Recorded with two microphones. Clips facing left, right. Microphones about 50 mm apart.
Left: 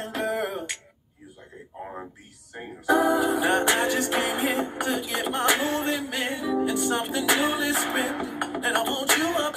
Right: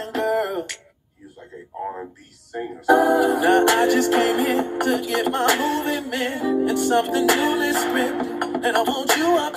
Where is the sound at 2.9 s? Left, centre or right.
Right.